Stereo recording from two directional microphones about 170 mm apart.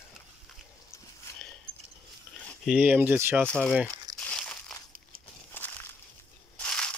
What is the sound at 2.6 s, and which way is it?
Speech, 10° right (ahead or behind).